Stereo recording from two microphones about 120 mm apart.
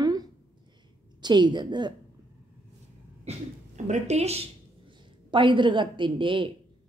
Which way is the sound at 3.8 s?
75° right (ahead or behind).